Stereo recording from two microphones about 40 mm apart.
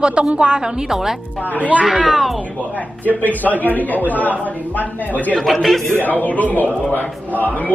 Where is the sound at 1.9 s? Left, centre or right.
Centre.